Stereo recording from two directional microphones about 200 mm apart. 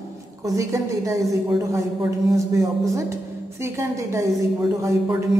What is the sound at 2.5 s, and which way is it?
A woman's voice, 15° right (ahead or behind).